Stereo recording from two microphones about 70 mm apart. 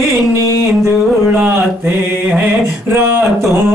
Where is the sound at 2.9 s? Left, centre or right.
Right.